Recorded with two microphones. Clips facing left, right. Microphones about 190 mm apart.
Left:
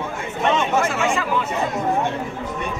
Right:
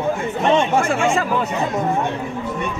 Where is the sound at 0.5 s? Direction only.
30° right (ahead or behind).